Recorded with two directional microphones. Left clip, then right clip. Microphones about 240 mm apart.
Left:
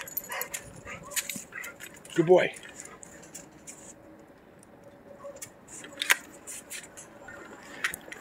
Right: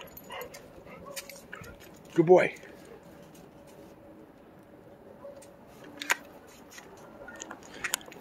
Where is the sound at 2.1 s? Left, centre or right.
Centre.